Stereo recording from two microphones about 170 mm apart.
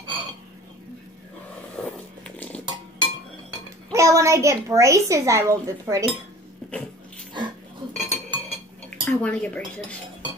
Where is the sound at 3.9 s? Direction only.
20° right (ahead or behind).